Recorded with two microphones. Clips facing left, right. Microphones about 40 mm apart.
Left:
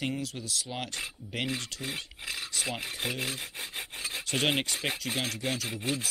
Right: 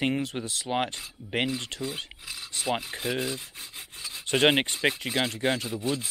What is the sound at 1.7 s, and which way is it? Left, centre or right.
Filing, right.